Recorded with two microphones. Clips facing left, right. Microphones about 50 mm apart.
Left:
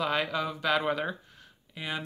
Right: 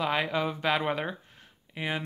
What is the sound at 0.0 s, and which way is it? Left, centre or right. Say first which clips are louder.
Speech: right 1 dB; centre.